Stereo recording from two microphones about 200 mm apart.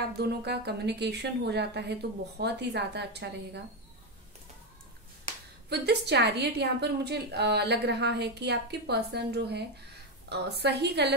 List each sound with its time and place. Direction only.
0.2 s a woman's voice: 55° right (ahead or behind)
5.7 s a woman's voice: 55° right (ahead or behind)